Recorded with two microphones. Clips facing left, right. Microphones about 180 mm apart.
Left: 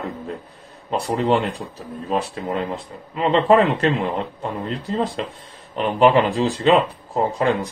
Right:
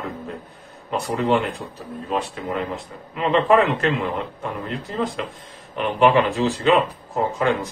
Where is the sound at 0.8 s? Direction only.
35° left (ahead or behind).